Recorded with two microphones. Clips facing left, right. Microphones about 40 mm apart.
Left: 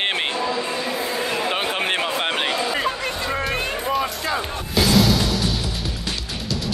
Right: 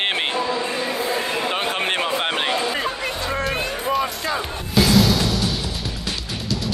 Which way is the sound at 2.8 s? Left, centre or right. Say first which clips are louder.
Left 1 dB; centre.